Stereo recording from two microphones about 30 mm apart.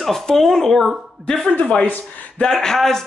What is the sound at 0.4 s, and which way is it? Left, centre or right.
Speech, centre.